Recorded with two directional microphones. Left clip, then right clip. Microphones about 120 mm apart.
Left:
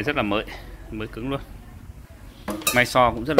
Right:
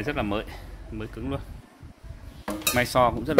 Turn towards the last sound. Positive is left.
turn(degrees=-25)  # may be behind; listen again after turning